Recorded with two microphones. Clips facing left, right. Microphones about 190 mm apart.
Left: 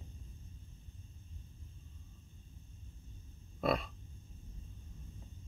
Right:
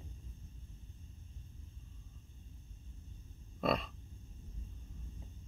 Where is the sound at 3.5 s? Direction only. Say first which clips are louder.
Even; 5° left (ahead or behind).